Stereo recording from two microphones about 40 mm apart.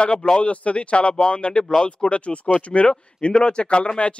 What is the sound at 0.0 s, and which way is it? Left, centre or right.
Speech, left.